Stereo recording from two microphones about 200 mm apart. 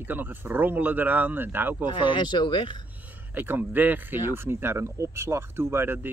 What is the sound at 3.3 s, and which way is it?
Speech, 10° right (ahead or behind).